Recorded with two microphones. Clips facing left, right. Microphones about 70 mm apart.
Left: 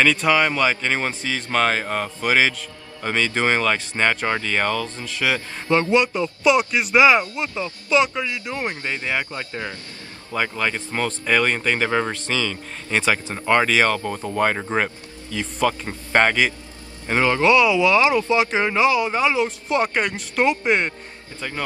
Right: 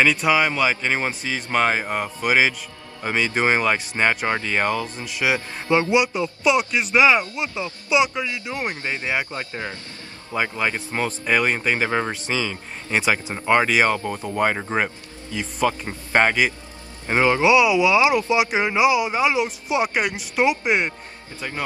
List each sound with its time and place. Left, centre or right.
0.0 s speech: centre